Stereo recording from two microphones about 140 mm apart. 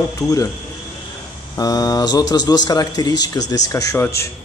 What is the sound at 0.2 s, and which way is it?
Speech, centre (ahead or behind).